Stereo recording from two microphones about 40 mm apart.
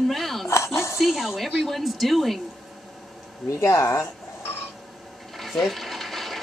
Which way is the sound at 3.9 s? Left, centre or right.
Left.